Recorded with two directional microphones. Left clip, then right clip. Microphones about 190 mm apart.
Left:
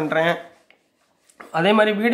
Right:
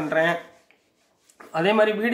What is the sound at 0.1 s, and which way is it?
Speech, 30° left (ahead or behind).